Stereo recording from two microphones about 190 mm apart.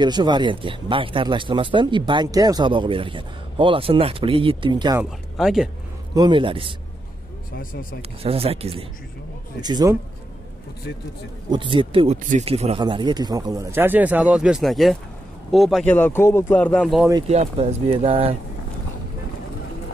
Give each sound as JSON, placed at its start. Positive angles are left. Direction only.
{"t": 0.0, "sound": "speech", "side_deg": -25}
{"t": 5.4, "sound": "speech", "side_deg": 0}
{"t": 6.1, "sound": "speech", "side_deg": -25}
{"t": 8.2, "sound": "speech", "side_deg": -30}
{"t": 9.6, "sound": "speech", "side_deg": -20}
{"t": 11.5, "sound": "speech", "side_deg": -25}
{"t": 17.3, "sound": "speech", "side_deg": -35}